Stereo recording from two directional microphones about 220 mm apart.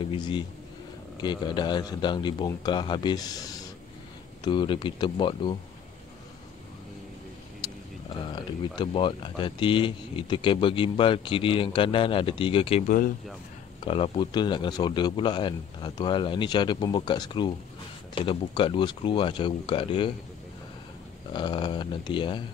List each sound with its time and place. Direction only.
0.1 s speech: 20° left (ahead or behind)
7.6 s a sound: 20° left (ahead or behind)
8.3 s speech: 20° left (ahead or behind); by 13.1 s 35° left (ahead or behind)
13.8 s speech: 25° left (ahead or behind)
21.3 s speech: 20° left (ahead or behind)